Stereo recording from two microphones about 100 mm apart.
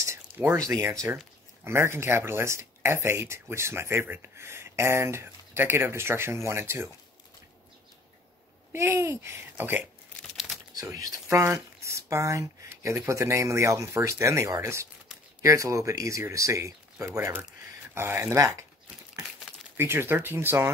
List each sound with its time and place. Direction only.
0.0 s a sound: 25° right (ahead or behind)
1.6 s speech: 25° right (ahead or behind)
8.7 s speech: 25° right (ahead or behind)
10.7 s speech: 35° right (ahead or behind)
11.2 s speech: 20° right (ahead or behind)
19.8 s speech: 25° right (ahead or behind)